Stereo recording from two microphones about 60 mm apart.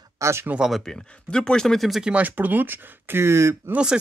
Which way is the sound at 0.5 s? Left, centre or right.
Centre.